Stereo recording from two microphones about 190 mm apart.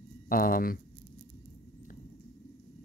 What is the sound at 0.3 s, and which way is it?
Speech, 50° left (ahead or behind).